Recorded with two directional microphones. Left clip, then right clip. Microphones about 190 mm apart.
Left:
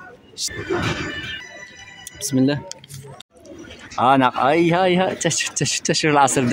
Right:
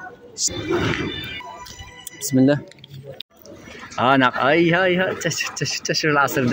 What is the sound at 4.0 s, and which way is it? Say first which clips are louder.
Speech: left 1 dB; centre (ahead or behind).